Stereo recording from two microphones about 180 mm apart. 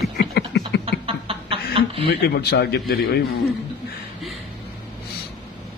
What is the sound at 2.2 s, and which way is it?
A man's voice, 60° left (ahead or behind).